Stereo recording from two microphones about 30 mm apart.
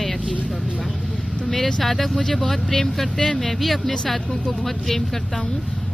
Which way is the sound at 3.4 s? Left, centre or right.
Centre.